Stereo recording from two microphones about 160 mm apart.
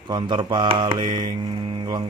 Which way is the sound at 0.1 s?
30° right (ahead or behind).